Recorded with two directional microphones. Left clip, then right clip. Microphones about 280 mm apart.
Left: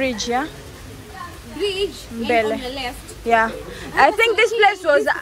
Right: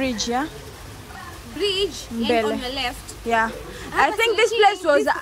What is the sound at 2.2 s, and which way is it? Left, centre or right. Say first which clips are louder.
A woman's voice: left 2 dB; centre.